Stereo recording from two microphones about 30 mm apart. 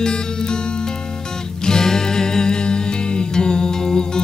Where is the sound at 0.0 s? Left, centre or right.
Left.